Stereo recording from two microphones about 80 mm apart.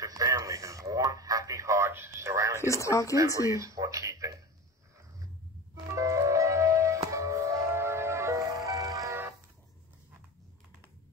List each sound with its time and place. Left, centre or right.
0.0 s radio: right
2.6 s speech: left
3.5 s a sound: right
5.9 s music: right